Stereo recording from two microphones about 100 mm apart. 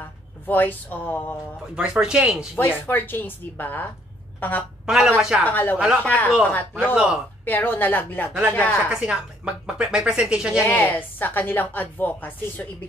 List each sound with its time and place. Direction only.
0.5 s a woman's voice: 20° left (ahead or behind)
1.8 s speech: 10° right (ahead or behind)
2.5 s a woman's voice: 20° left (ahead or behind)
4.8 s speech: 5° right (ahead or behind)
5.5 s speech: 15° left (ahead or behind)
7.4 s a woman's voice: 20° left (ahead or behind)
8.3 s speech: 10° right (ahead or behind)
8.5 s a woman's voice: 20° left (ahead or behind)
9.0 s speech: 10° right (ahead or behind)
10.6 s a woman's voice: 20° left (ahead or behind)